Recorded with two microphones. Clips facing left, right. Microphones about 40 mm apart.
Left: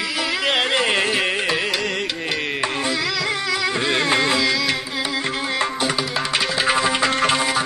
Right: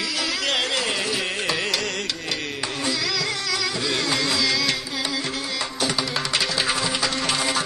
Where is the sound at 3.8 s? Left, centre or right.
Left.